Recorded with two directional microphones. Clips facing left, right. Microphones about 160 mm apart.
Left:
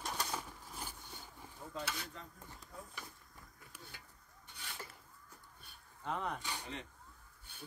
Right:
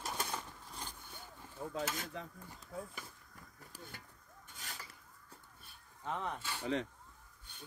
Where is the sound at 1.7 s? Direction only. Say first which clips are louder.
Right 3 dB; 45° right (ahead or behind).